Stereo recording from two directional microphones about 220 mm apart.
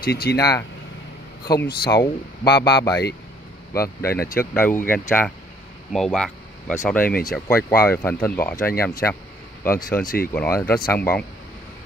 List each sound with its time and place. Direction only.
0.0 s speech: 45° left (ahead or behind)
0.4 s speech: 15° left (ahead or behind)
1.8 s speech: 15° left (ahead or behind)